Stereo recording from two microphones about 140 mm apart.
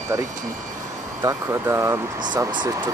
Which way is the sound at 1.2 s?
20° right (ahead or behind).